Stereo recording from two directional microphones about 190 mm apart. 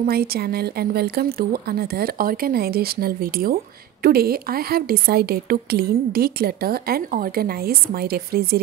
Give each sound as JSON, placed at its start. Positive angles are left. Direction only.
{"t": 0.0, "sound": "a woman's voice", "side_deg": -55}